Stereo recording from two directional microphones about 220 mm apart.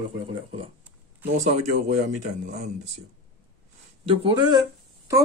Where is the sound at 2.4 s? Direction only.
35° right (ahead or behind).